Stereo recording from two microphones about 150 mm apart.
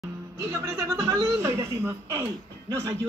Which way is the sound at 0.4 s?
20° right (ahead or behind).